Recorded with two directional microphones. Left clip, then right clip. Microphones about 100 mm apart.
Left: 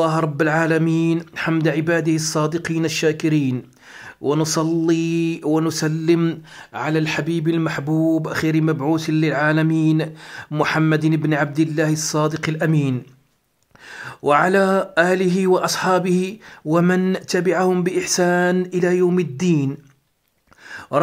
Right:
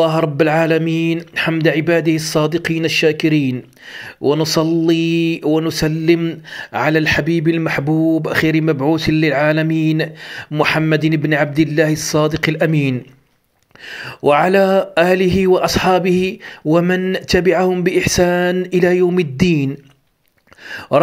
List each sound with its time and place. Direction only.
0.0 s speech: 10° right (ahead or behind)
1.6 s speech: 15° right (ahead or behind)
6.5 s speech: 35° right (ahead or behind)
7.2 s speech: 20° right (ahead or behind)
7.9 s speech: 5° right (ahead or behind)
8.3 s speech: 20° right (ahead or behind)
18.6 s speech: 20° right (ahead or behind)
20.6 s a sound: 20° right (ahead or behind)